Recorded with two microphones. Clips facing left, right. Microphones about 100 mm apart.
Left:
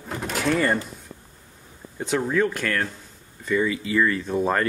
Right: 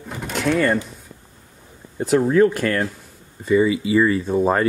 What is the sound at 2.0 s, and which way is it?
Speech, 5° right (ahead or behind).